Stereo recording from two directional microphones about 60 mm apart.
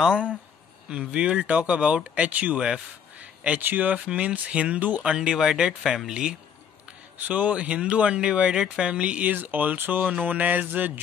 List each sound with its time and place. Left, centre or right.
0.8 s speech: centre
5.0 s speech: centre
7.2 s speech: right